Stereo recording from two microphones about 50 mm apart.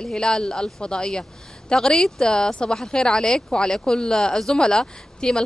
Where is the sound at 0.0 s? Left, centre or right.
Centre.